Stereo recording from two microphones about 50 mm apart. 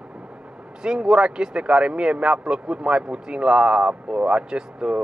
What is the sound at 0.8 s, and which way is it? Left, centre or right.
Speech, centre.